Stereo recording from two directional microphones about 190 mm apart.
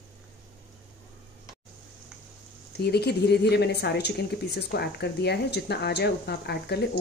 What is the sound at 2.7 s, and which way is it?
A woman's voice, 60° left (ahead or behind).